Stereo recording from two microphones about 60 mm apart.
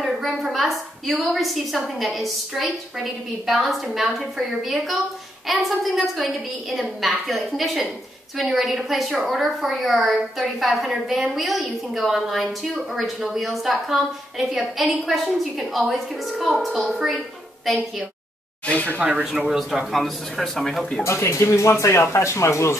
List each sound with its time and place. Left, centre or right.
0.0 s a woman's voice: centre
18.7 s speech: left
18.9 s speech: right
19.3 s a woman's voice: centre
21.0 s speech: left